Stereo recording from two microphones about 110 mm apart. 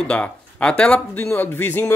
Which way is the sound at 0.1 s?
10° left (ahead or behind).